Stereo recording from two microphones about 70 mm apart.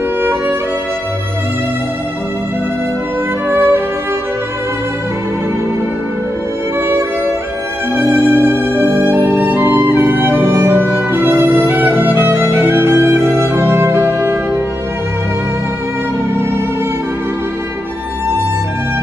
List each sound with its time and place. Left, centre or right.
3.4 s music: right
8.0 s music: right